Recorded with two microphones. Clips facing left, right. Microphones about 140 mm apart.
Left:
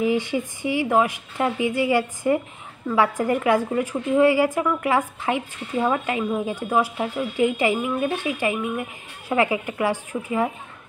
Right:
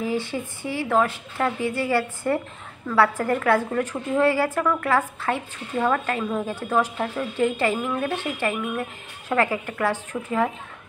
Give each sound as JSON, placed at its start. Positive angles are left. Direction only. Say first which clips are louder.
{"t": 0.0, "sound": "a woman's voice", "louder": "left 4 dB", "side_deg": 15}